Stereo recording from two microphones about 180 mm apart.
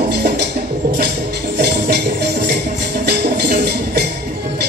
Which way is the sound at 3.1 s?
65° right (ahead or behind).